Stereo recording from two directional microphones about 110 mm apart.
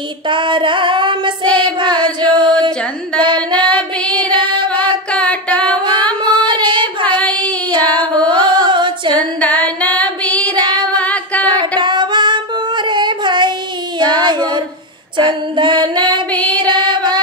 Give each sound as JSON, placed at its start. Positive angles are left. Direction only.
{"t": 0.3, "sound": "female singing", "side_deg": -50}
{"t": 3.7, "sound": "female singing", "side_deg": 10}
{"t": 4.8, "sound": "a sound", "side_deg": 10}
{"t": 6.2, "sound": "singing", "side_deg": -45}
{"t": 7.2, "sound": "female singing", "side_deg": 10}
{"t": 7.9, "sound": "female singing", "side_deg": -45}
{"t": 9.4, "sound": "singing", "side_deg": 15}
{"t": 9.9, "sound": "female singing", "side_deg": 10}
{"t": 11.8, "sound": "female singing", "side_deg": -45}
{"t": 13.9, "sound": "child singing", "side_deg": -45}
{"t": 15.1, "sound": "female singing", "side_deg": -45}